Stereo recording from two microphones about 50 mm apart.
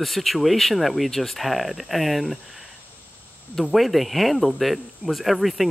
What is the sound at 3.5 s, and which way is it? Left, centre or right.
Speech, centre.